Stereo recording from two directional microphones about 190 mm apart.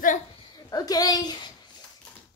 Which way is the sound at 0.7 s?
20° left (ahead or behind).